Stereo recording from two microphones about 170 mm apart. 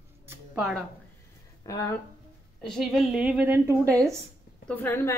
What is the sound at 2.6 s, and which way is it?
Speech, centre (ahead or behind).